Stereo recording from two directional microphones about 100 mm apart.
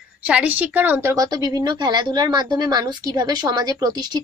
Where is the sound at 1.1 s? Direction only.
35° right (ahead or behind).